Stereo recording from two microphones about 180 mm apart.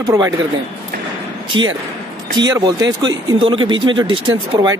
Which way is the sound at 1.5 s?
25° right (ahead or behind).